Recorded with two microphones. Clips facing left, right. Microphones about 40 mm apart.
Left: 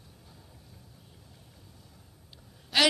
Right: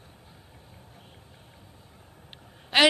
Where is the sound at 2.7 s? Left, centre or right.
Right.